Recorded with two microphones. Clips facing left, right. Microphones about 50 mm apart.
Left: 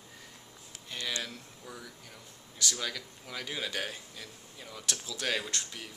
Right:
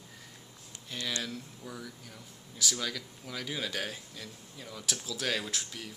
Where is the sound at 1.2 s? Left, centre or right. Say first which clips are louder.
Right 3 dB; centre.